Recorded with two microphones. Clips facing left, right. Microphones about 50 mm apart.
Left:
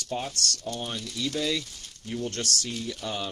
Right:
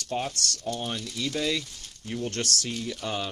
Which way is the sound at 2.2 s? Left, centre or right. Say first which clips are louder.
Right 1 dB; right.